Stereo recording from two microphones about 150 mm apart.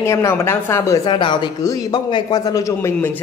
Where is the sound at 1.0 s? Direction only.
30° left (ahead or behind).